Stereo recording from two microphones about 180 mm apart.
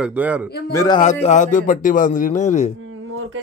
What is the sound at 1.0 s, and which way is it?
A man's voice, 40° left (ahead or behind).